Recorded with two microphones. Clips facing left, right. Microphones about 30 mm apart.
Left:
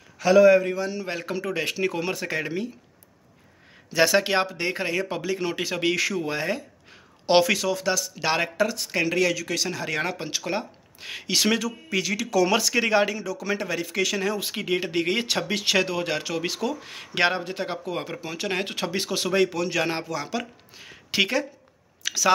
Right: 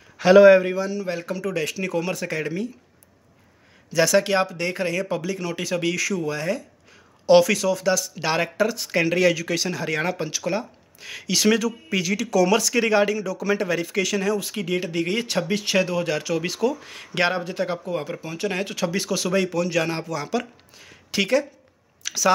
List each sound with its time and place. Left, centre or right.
0.2 s a man's voice: right
1.0 s speech: centre
3.9 s speech: left
7.5 s speech: centre
10.2 s speech: centre
14.3 s speech: left
15.5 s speech: left
16.0 s speech: left
16.3 s speech: centre
17.9 s speech: left
18.5 s speech: left
19.4 s speech: centre
20.7 s speech: left
22.0 s chewing: centre